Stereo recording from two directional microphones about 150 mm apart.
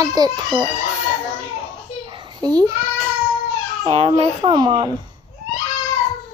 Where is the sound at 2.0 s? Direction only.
30° right (ahead or behind).